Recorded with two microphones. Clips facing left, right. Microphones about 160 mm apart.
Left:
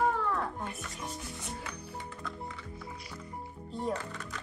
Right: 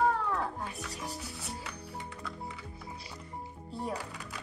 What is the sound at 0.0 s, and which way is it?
Music, centre (ahead or behind).